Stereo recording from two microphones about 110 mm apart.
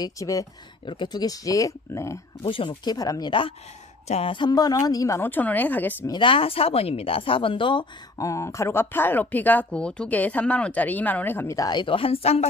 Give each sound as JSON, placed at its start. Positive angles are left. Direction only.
{"t": 0.0, "sound": "speech", "side_deg": 30}
{"t": 0.8, "sound": "speech", "side_deg": 45}
{"t": 2.4, "sound": "speech", "side_deg": 55}
{"t": 5.3, "sound": "speech", "side_deg": 15}
{"t": 6.0, "sound": "speech", "side_deg": 50}
{"t": 8.2, "sound": "speech", "side_deg": 30}
{"t": 11.7, "sound": "a woman's voice", "side_deg": 50}